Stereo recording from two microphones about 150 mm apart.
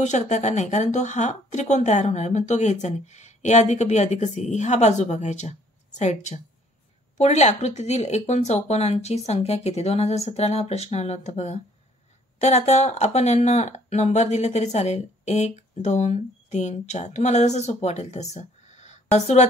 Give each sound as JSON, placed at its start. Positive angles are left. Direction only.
{"t": 0.0, "sound": "speech", "side_deg": 50}